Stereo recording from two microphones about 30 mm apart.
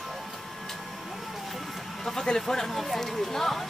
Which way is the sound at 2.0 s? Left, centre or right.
Centre.